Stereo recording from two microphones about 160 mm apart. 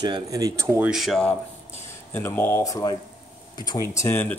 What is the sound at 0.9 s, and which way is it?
Speech, centre (ahead or behind).